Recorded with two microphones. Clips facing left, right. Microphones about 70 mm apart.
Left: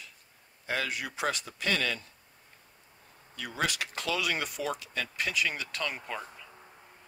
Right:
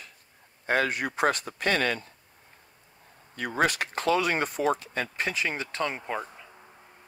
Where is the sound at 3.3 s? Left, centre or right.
Right.